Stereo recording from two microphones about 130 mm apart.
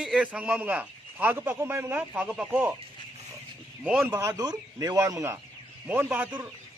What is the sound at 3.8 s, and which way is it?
Speech, 10° right (ahead or behind).